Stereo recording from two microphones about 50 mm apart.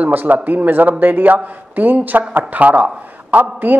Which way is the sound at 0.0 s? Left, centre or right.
Right.